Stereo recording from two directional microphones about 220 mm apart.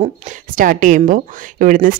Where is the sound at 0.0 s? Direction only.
35° right (ahead or behind).